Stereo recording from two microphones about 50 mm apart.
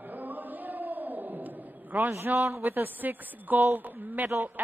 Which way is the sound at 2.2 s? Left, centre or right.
Right.